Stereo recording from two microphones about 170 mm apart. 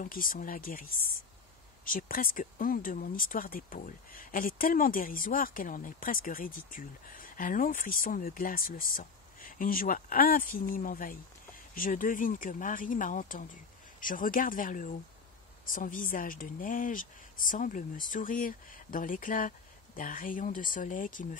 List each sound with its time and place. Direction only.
0.0 s speech: 55° left (ahead or behind)